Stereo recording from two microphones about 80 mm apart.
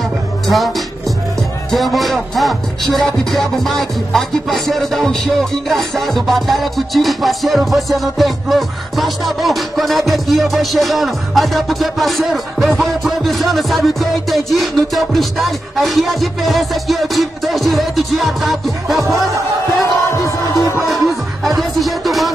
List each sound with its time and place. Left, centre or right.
0.5 s speech: centre
1.7 s music: centre
18.9 s speech: right
20.1 s music: left
20.9 s music: centre